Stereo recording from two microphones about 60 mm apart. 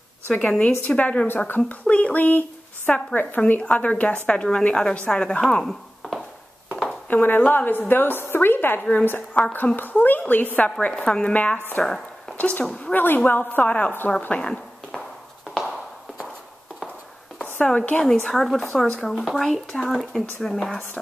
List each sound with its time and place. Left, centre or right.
0.3 s a woman's voice: left; by 6.2 s centre
6.7 s a sound: centre
7.1 s a woman's voice: left
11.1 s a woman's voice: centre
11.8 s a sound: centre
12.4 s a woman's voice: left
12.9 s a woman's voice: left
14.3 s a sound: centre
17.7 s a woman's voice: left
18.0 s a woman's voice: centre